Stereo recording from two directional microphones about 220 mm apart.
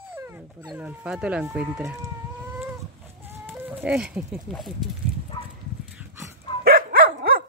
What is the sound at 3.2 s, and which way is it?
Chicken, 10° right (ahead or behind).